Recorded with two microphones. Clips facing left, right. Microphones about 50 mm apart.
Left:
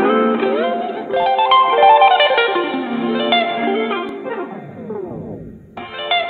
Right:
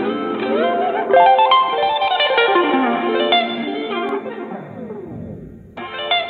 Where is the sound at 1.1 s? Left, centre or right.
Centre.